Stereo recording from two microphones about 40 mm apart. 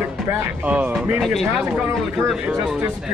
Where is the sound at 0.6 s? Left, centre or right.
Right.